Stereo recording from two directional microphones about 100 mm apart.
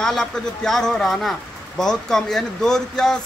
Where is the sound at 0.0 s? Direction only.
5° left (ahead or behind).